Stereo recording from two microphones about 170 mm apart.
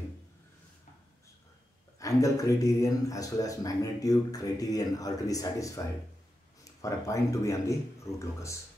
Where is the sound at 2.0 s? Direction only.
20° left (ahead or behind).